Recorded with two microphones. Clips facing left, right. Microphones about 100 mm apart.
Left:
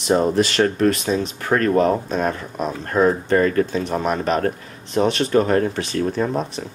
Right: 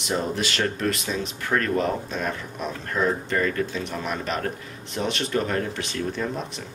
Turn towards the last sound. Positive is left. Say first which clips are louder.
# left 7 dB
turn(degrees=40)  # may be behind; listen again after turning